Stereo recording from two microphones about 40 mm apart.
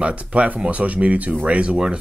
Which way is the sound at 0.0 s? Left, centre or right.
Right.